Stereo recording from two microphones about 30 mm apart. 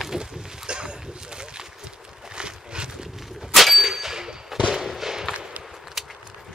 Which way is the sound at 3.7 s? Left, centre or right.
Centre.